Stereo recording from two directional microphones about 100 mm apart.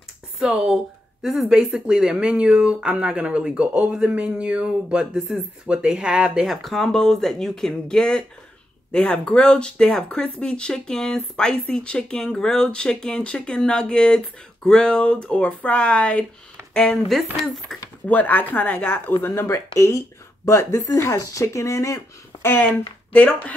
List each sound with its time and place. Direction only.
0.4 s speech: 5° right (ahead or behind); by 16.3 s 10° left (ahead or behind)
17.1 s speech: centre (ahead or behind)
18.0 s speech: 15° left (ahead or behind); by 22.4 s 35° left (ahead or behind)
22.4 s speech: 20° left (ahead or behind)